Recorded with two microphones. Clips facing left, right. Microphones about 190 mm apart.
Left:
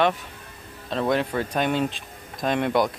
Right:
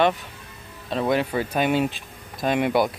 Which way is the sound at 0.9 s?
5° right (ahead or behind).